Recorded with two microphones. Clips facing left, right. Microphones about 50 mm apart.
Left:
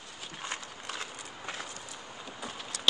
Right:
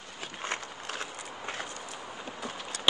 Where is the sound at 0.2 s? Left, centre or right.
Right.